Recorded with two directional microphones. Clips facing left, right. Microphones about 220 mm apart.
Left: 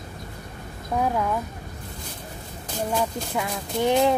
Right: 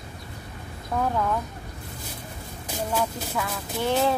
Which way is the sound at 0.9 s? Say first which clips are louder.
Left 1 dB; 10° left (ahead or behind).